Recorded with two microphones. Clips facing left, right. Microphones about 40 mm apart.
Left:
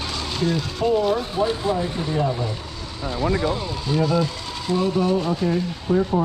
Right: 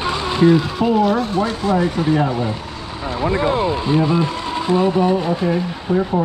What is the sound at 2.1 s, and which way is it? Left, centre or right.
Speech, right.